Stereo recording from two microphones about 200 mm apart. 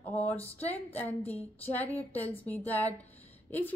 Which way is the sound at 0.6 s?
30° left (ahead or behind).